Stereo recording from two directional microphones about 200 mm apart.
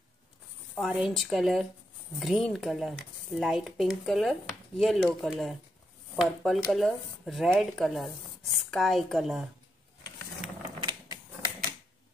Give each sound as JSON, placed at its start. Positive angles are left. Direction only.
{"t": 0.7, "sound": "speech", "side_deg": 0}
{"t": 10.8, "sound": "mechanisms", "side_deg": -20}